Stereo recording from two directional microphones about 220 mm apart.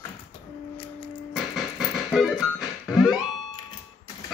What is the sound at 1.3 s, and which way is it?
Music, centre (ahead or behind).